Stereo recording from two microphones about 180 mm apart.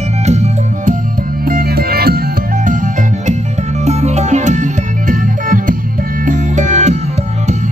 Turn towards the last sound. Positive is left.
turn(degrees=-40)  # may be behind; listen again after turning